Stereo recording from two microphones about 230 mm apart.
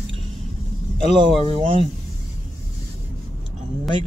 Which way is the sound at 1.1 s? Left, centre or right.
Right.